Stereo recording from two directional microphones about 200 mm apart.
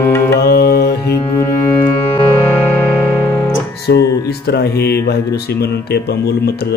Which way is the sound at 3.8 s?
55° left (ahead or behind).